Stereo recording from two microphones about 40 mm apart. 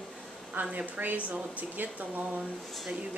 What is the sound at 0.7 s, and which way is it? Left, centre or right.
Speech, right.